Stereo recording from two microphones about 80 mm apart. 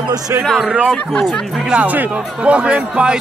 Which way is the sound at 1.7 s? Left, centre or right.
Centre.